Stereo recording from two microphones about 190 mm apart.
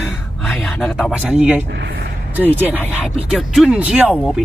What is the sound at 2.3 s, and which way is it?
Speech, 10° right (ahead or behind).